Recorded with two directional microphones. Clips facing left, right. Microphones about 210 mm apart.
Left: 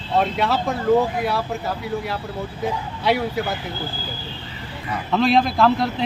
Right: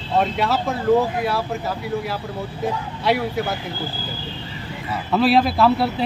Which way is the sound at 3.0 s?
Centre (ahead or behind).